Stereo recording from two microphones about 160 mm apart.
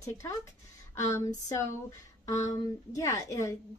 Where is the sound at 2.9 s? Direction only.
20° left (ahead or behind).